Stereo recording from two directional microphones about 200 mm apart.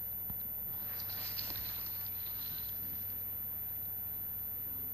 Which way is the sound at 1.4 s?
30° left (ahead or behind).